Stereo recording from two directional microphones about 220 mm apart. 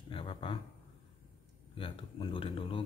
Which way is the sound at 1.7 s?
25° left (ahead or behind).